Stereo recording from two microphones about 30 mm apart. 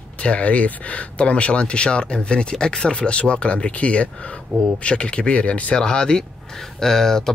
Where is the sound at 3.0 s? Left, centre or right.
Left.